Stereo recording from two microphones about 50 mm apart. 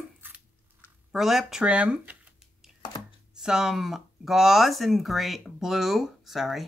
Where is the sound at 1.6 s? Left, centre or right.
Right.